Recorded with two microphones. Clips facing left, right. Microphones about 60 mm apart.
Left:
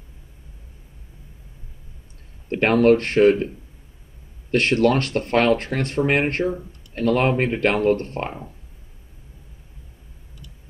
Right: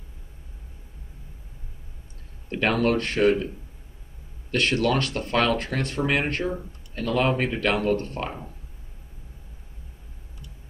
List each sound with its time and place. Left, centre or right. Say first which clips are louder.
2.5 s speech: left 7 dB; left
4.5 s speech: left 5 dB; left